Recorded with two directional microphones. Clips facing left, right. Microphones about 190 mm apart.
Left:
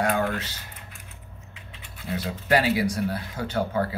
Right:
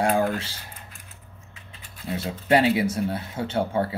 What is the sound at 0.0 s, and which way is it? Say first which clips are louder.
Speech: right 2 dB; 30° right (ahead or behind).